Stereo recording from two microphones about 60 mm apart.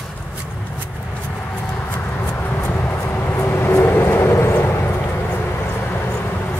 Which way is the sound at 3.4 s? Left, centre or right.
Left.